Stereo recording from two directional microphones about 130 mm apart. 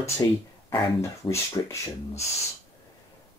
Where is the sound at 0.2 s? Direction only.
30° left (ahead or behind).